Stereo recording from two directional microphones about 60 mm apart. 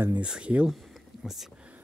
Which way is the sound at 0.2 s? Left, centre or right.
Centre.